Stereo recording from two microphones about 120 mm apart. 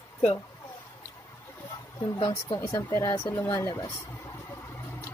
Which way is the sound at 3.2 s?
20° left (ahead or behind).